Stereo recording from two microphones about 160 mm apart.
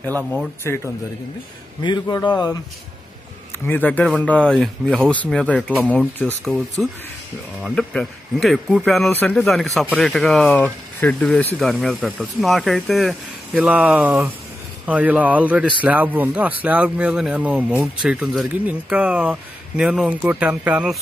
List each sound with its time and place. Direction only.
1.8 s a man's voice: 25° left (ahead or behind)
3.6 s a man's voice: 10° left (ahead or behind); by 21.0 s 5° right (ahead or behind)